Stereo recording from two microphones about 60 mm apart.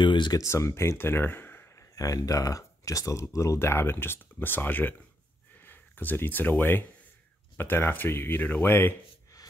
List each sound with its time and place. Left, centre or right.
0.5 s speech: left
1.8 s speech: left
3.5 s speech: left
8.6 s speech: left